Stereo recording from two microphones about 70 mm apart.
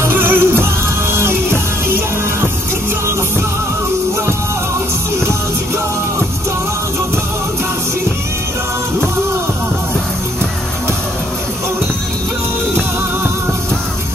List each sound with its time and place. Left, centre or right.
0.1 s music: right